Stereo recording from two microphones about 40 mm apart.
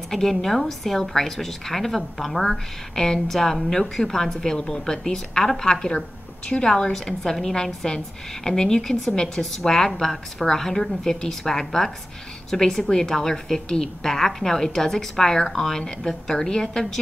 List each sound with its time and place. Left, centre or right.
0.1 s a woman's voice: centre